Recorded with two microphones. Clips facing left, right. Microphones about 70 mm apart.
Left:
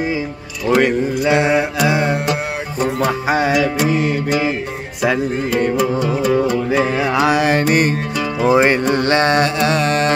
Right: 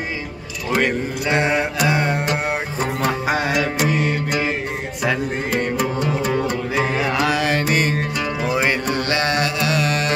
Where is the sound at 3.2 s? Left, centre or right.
Centre.